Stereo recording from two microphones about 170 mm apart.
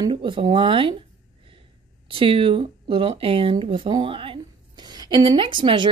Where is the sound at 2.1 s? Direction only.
30° right (ahead or behind).